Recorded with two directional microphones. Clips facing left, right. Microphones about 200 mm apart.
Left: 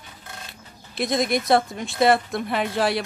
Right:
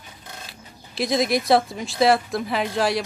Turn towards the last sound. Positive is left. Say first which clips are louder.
# even
turn(degrees=0)  # may be behind; listen again after turning